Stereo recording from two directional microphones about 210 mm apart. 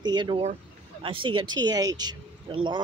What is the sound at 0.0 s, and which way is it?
Speech, 20° right (ahead or behind).